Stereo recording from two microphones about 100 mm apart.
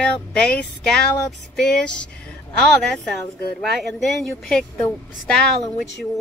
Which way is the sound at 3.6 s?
Centre (ahead or behind).